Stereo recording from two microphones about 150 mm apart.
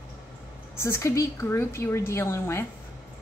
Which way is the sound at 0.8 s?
20° left (ahead or behind).